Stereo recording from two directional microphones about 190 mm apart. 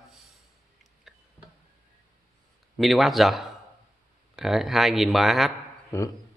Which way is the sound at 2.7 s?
Centre (ahead or behind).